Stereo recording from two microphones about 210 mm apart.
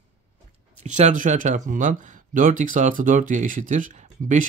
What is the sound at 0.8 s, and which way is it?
Speech, 35° right (ahead or behind).